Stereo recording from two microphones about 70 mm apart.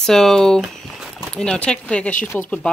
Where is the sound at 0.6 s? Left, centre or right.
Centre.